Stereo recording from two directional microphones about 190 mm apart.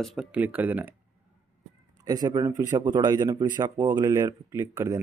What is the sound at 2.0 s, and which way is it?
Speech, 20° right (ahead or behind).